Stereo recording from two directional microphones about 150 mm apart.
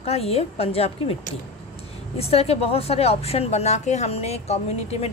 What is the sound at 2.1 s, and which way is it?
Speech, 40° left (ahead or behind).